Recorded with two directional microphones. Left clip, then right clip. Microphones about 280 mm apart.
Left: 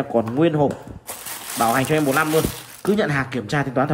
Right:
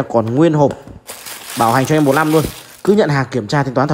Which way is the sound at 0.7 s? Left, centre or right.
Centre.